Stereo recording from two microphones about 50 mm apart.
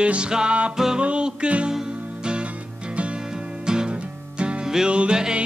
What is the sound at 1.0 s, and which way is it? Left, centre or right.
Music, right.